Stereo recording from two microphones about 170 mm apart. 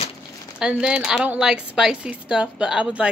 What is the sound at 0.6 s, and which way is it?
A woman's voice, 5° right (ahead or behind).